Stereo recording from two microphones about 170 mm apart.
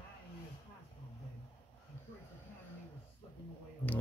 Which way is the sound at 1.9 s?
15° left (ahead or behind).